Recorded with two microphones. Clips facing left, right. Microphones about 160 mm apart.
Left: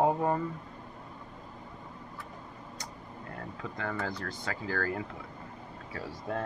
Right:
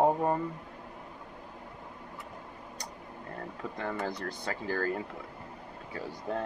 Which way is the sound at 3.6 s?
25° right (ahead or behind).